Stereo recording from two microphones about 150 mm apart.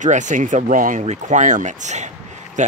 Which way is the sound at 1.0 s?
50° right (ahead or behind).